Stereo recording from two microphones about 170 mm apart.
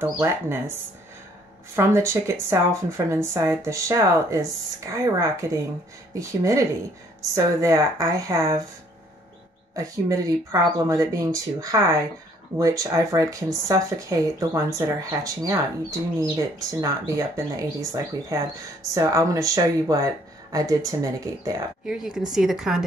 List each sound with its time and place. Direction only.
0.0 s speech: 15° right (ahead or behind)
1.8 s speech: 15° right (ahead or behind)
9.8 s speech: 20° right (ahead or behind)
21.8 s speech: 5° right (ahead or behind)